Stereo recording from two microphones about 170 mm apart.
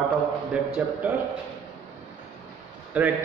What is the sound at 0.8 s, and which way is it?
Speech, 10° right (ahead or behind).